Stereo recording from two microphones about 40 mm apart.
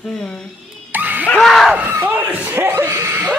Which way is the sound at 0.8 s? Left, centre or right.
Right.